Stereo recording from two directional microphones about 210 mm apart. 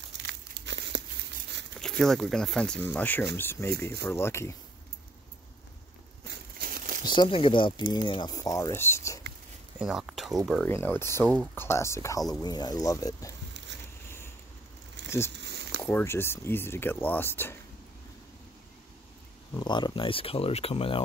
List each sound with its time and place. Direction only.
0.2 s crumpling: 55° right (ahead or behind)
1.8 s speech: centre (ahead or behind)
6.2 s crumpling: 50° right (ahead or behind)
7.1 s speech: 20° left (ahead or behind)
9.8 s speech: centre (ahead or behind); by 13.3 s 15° left (ahead or behind)
15.0 s speech: 10° left (ahead or behind)
15.3 s a sound: 55° right (ahead or behind)
15.8 s speech: 10° left (ahead or behind)
19.6 s speech: 20° left (ahead or behind)